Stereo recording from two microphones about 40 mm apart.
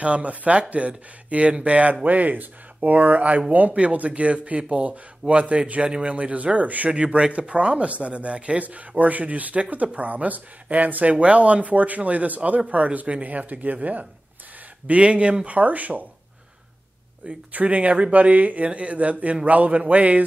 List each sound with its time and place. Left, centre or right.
0.0 s speech: right
6.9 s speech: right
11.1 s speech: right
14.9 s speech: right
17.5 s speech: right